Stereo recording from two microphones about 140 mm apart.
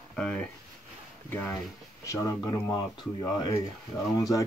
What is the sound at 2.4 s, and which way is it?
Speech, 30° left (ahead or behind).